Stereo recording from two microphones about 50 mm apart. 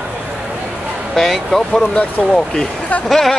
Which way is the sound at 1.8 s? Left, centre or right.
Left.